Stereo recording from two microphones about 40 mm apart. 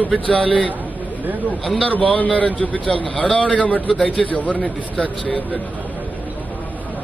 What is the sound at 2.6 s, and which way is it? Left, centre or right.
A man's voice, left.